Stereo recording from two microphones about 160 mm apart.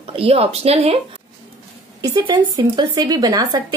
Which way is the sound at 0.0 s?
35° right (ahead or behind).